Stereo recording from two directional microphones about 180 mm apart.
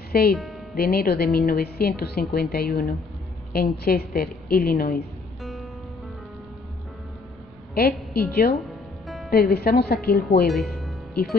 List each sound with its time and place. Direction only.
0.1 s a woman's voice: 60° left (ahead or behind)
5.4 s music: centre (ahead or behind)
7.7 s a woman's voice: 60° left (ahead or behind)
8.6 s music: centre (ahead or behind)
9.3 s a woman's voice: 60° left (ahead or behind)
10.4 s speech: centre (ahead or behind)